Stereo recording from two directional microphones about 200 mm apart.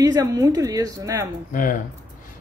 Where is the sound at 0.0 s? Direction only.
20° right (ahead or behind).